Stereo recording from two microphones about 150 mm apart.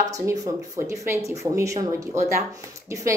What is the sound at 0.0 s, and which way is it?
Speech, 20° right (ahead or behind).